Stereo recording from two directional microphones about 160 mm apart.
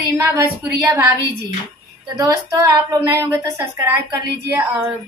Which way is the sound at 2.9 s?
20° right (ahead or behind).